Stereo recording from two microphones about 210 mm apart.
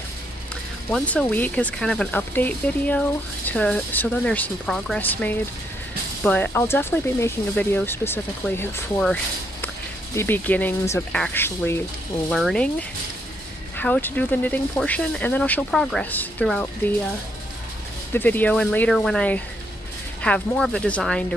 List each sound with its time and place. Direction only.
0.8 s speech: 5° left (ahead or behind)
13.7 s speech: 5° left (ahead or behind)
18.1 s speech: 10° left (ahead or behind)